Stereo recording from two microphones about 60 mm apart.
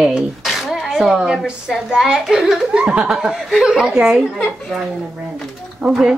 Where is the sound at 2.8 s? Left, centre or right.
Centre.